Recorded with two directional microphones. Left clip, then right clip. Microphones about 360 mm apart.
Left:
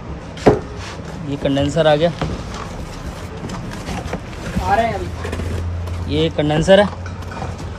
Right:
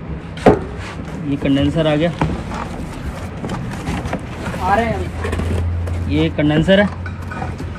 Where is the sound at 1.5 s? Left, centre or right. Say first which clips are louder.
Left 1 dB; left.